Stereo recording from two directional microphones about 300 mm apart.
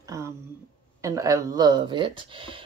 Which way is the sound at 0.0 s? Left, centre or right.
Centre.